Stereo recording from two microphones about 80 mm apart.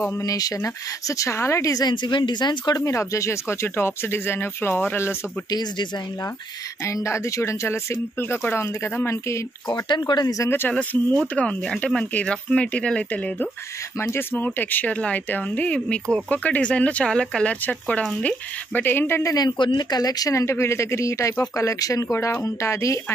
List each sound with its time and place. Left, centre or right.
0.2 s speech: left
2.8 s speech: left
5.5 s speech: left
6.8 s speech: left
9.7 s speech: left
10.2 s speech: left
10.7 s speech: centre
13.9 s speech: left
19.2 s speech: left
20.3 s speech: left